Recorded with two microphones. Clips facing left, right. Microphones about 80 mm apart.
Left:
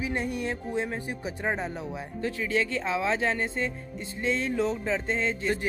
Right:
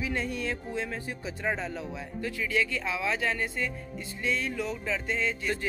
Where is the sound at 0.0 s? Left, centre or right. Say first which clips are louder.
Left 2 dB; left.